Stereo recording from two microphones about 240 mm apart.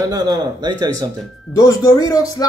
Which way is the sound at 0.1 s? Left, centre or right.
Centre.